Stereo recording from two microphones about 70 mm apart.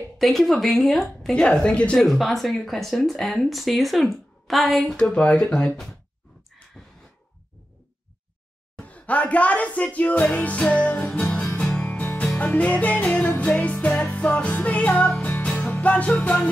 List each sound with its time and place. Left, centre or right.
0.2 s a woman's voice: centre
2.0 s a woman's voice: centre
6.8 s a sound: centre
8.7 s speech: centre
11.1 s music: centre